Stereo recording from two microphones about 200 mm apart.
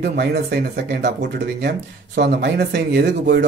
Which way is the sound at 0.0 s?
55° right (ahead or behind).